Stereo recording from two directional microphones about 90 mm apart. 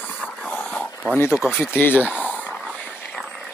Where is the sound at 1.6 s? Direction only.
20° left (ahead or behind).